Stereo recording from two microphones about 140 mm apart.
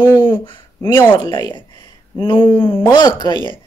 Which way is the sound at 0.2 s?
35° left (ahead or behind).